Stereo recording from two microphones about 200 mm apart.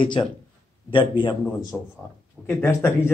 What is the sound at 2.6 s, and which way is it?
Speech, 15° left (ahead or behind).